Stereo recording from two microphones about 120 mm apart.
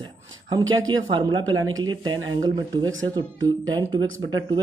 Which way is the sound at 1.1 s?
40° right (ahead or behind).